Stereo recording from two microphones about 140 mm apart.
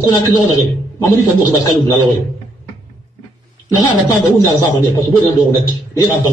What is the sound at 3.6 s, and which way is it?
A man's voice, 25° left (ahead or behind).